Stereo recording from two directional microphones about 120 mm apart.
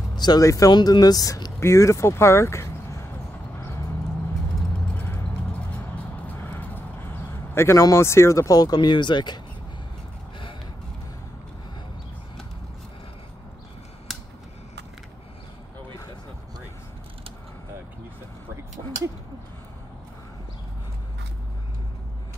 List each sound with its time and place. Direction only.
0.1 s speech: 35° left (ahead or behind)
6.2 s clip-clop: 15° left (ahead or behind); by 9.4 s 40° left (ahead or behind)